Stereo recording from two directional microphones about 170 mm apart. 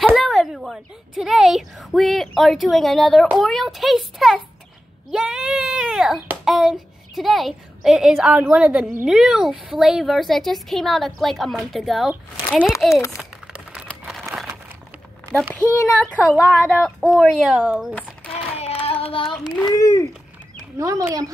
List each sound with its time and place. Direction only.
0.0 s a sound: centre (ahead or behind)
1.2 s a woman's voice: centre (ahead or behind)
5.1 s sheep: 5° right (ahead or behind)
6.2 s a child's voice: centre (ahead or behind); by 13.2 s 15° left (ahead or behind)
13.2 s a sound: 5° right (ahead or behind)
15.5 s a child's voice: 10° left (ahead or behind)
17.0 s a woman's voice: 5° right (ahead or behind)
17.9 s a sound: 5° left (ahead or behind)
18.9 s child singing: 35° left (ahead or behind)
19.7 s speech: 20° left (ahead or behind)
20.7 s speech: 20° right (ahead or behind)